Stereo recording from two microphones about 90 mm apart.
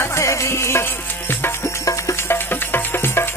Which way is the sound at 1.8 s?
35° left (ahead or behind).